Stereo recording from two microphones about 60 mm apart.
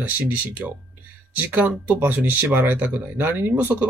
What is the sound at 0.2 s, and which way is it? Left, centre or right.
Speech, right.